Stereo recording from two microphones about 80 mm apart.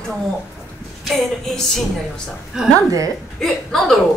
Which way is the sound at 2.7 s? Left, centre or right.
Right.